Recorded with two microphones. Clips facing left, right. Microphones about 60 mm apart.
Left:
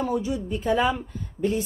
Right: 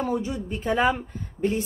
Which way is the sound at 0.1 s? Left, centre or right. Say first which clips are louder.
Left 1 dB; right.